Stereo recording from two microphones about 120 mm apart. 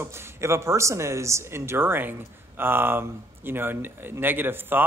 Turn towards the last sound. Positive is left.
turn(degrees=-15)  # may be behind; listen again after turning